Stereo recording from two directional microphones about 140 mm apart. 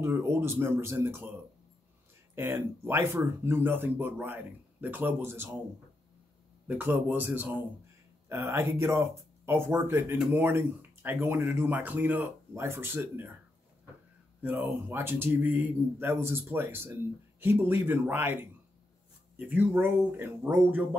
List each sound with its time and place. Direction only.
0.0 s speech: 20° right (ahead or behind)
2.3 s speech: 15° right (ahead or behind)
6.7 s speech: 10° right (ahead or behind)
14.4 s speech: 10° right (ahead or behind)